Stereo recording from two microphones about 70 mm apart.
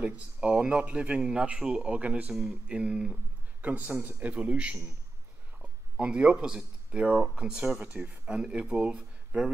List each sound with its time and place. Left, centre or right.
0.0 s a man's voice: centre
3.6 s speech: right
7.7 s a man's voice: right